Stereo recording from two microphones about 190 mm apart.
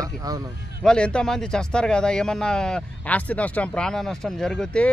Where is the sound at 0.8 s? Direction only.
5° left (ahead or behind).